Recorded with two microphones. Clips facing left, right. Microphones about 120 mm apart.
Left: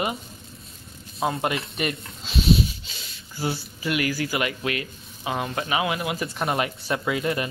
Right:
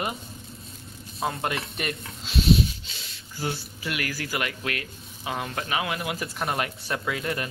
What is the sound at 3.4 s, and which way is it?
Speech, 5° left (ahead or behind).